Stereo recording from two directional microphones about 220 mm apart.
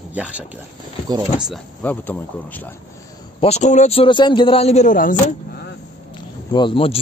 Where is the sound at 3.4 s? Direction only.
30° left (ahead or behind).